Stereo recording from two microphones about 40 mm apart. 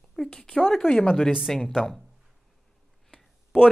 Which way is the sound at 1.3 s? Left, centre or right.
Centre.